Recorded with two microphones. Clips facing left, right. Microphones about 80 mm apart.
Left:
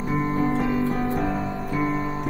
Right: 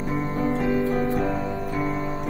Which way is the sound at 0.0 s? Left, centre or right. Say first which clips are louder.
Left 2 dB; left.